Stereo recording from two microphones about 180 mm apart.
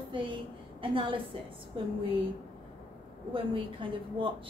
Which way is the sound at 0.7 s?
30° right (ahead or behind).